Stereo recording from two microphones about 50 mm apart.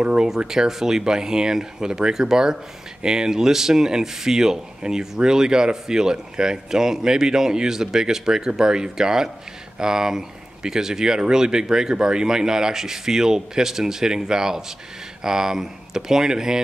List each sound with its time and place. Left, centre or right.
0.0 s speech: centre
0.5 s speech: centre